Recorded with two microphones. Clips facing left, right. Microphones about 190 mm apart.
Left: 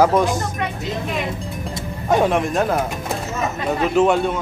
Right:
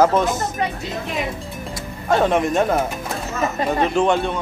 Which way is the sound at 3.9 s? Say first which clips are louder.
Left 2 dB; 5° left (ahead or behind).